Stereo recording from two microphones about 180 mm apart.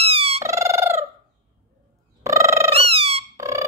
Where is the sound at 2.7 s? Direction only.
35° right (ahead or behind).